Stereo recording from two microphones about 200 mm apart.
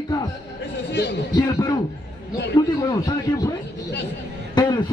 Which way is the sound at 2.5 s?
20° left (ahead or behind).